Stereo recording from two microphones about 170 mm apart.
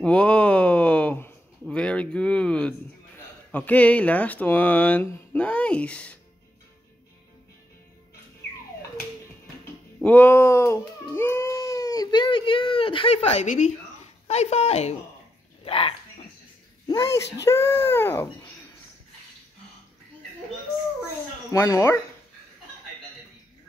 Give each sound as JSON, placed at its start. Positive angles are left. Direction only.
{"t": 0.0, "sound": "a sound", "side_deg": 5}
{"t": 3.2, "sound": "speech", "side_deg": 10}
{"t": 10.0, "sound": "speech", "side_deg": 10}
{"t": 16.8, "sound": "speech", "side_deg": 15}
{"t": 21.5, "sound": "speech", "side_deg": 20}